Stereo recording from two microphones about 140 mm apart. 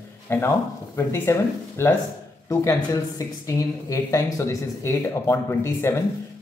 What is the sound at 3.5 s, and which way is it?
Speech, 20° left (ahead or behind).